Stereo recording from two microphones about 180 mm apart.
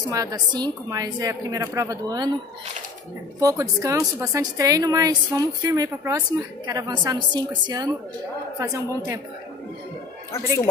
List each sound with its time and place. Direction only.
0.1 s a woman's voice: 20° right (ahead or behind)
3.3 s a woman's voice: 20° right (ahead or behind)